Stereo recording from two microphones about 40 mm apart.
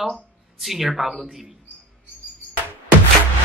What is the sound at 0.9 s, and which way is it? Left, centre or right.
Speech, centre.